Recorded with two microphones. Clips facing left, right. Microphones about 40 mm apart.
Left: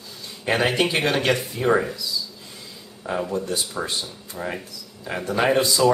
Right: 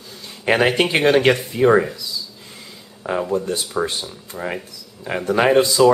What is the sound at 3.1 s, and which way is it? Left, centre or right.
Speech, right.